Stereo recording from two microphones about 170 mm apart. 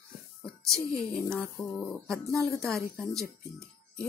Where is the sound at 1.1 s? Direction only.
5° left (ahead or behind).